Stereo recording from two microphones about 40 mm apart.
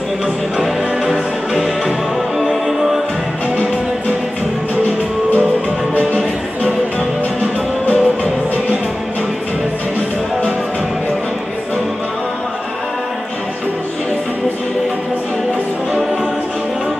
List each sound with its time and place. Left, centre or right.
0.6 s music: centre
7.8 s music: left